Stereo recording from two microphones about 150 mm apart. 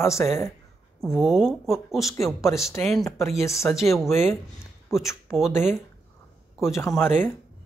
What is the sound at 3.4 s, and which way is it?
Speech, 20° left (ahead or behind).